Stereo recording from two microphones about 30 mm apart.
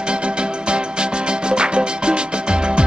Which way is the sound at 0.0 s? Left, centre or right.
Right.